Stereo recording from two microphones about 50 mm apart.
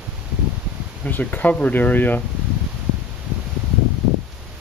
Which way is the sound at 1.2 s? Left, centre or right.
Left.